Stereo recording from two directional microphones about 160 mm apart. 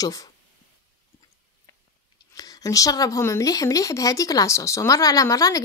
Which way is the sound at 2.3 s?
20° left (ahead or behind).